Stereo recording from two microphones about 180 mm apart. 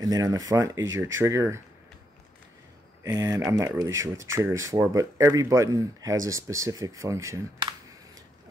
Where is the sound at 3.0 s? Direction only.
15° right (ahead or behind).